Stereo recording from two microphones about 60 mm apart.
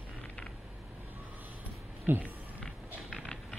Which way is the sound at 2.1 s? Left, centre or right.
Right.